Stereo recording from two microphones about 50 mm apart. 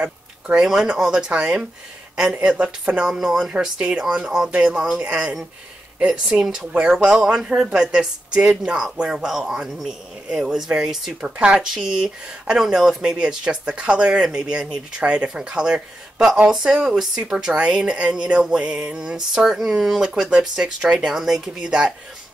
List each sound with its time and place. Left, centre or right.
0.6 s a woman's voice: centre
3.1 s speech: centre
4.5 s a woman's voice: right
6.4 s speech: centre
11.2 s a woman's voice: right
21.1 s speech: centre
21.6 s a woman's voice: right